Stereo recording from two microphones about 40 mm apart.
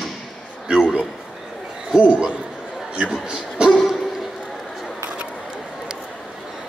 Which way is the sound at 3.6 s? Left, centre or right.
Right.